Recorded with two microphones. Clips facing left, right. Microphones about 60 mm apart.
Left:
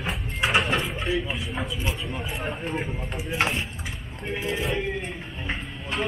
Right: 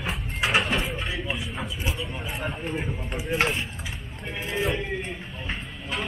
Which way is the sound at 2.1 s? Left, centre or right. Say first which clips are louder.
Left 1 dB; centre.